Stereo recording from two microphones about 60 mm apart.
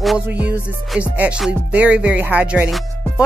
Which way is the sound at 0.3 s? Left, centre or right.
Right.